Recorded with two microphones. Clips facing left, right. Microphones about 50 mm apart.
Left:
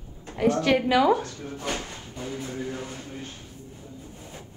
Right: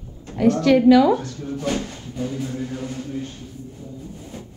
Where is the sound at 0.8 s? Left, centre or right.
Centre.